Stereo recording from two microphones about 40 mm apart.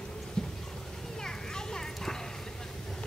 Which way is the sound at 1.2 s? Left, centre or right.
Centre.